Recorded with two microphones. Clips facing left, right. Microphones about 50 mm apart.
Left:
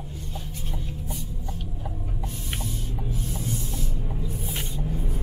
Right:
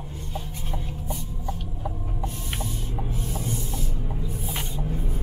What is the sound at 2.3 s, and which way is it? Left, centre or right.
Spray, centre.